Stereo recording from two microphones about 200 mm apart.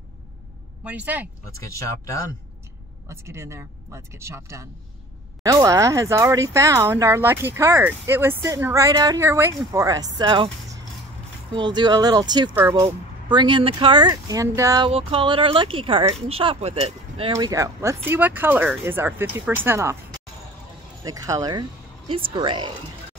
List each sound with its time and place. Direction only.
0.8 s speech: 10° right (ahead or behind)
1.5 s speech: 15° left (ahead or behind)
3.1 s speech: 15° right (ahead or behind)
14.9 s speech: 30° right (ahead or behind)
17.5 s speech: 15° right (ahead or behind)
21.0 s speech: 20° right (ahead or behind)